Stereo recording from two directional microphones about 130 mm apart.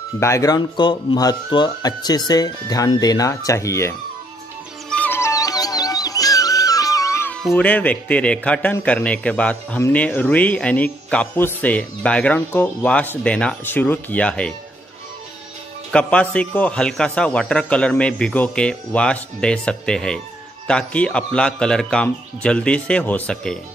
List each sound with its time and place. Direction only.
0.2 s speech: 25° left (ahead or behind)
4.8 s music: 10° left (ahead or behind)
7.5 s speech: 10° left (ahead or behind)
15.9 s speech: 10° left (ahead or behind)